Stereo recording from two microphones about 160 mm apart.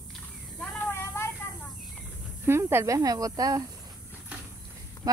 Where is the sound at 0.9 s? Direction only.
15° left (ahead or behind).